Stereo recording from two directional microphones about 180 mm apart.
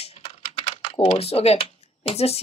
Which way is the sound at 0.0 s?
35° left (ahead or behind).